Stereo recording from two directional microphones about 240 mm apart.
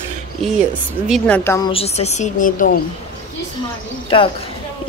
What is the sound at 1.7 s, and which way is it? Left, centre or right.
Speech, left.